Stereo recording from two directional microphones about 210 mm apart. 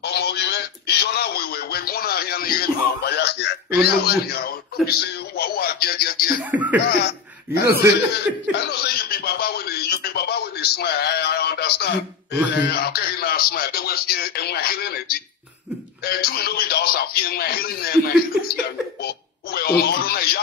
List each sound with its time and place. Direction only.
0.0 s a sound: 50° left (ahead or behind)
6.5 s beatboxing: 5° right (ahead or behind)
6.9 s laughter: 50° left (ahead or behind)
8.1 s speech: 50° left (ahead or behind)
16.0 s speech: 45° left (ahead or behind)
19.0 s a sound: 45° left (ahead or behind)